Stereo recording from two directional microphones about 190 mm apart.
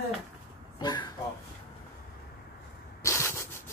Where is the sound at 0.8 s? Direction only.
20° left (ahead or behind).